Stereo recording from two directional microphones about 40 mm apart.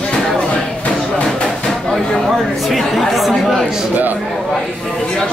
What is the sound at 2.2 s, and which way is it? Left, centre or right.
Speech, centre.